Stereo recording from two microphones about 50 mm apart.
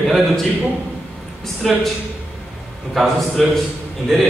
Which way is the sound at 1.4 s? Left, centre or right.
Centre.